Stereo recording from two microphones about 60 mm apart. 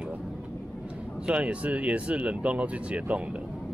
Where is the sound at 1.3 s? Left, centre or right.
Right.